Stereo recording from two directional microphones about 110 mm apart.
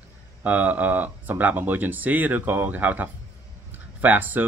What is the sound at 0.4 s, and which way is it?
Speech, 15° right (ahead or behind).